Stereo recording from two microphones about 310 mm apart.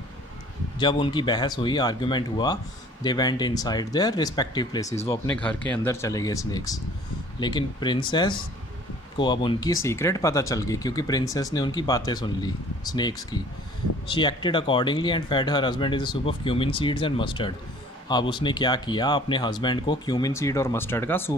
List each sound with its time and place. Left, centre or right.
0.7 s speech: centre